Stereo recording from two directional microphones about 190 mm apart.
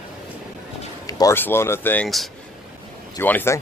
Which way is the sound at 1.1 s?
15° left (ahead or behind).